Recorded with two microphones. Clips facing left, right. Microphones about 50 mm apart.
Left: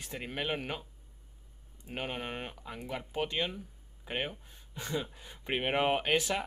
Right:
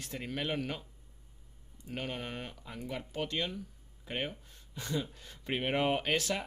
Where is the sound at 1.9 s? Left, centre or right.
Left.